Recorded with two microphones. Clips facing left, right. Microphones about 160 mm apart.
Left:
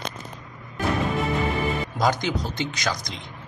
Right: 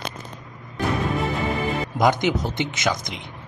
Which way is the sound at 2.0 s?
20° right (ahead or behind).